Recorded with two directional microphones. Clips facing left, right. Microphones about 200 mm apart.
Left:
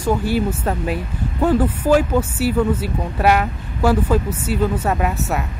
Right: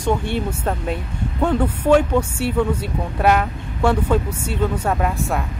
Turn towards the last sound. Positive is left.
turn(degrees=5)  # may be behind; listen again after turning